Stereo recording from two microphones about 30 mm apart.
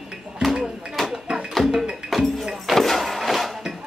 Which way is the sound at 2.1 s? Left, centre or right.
Centre.